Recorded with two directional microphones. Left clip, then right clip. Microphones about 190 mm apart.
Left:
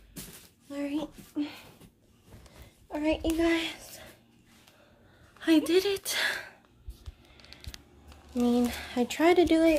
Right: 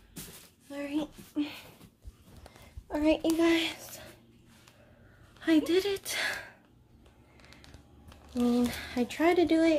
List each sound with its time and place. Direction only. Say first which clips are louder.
0.7 s a sound: left 1 dB; 5° left (ahead or behind)
1.3 s a sound: even; 15° right (ahead or behind)
2.9 s a child's voice: right 2 dB; 25° right (ahead or behind)
5.4 s a woman's voice: left 2 dB; 15° left (ahead or behind)
8.5 s speech: left 2 dB; 15° left (ahead or behind)
9.0 s speech: left 3 dB; 25° left (ahead or behind)